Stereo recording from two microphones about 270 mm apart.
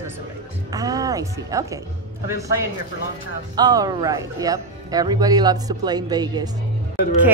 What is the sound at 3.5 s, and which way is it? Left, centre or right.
A woman's voice, centre.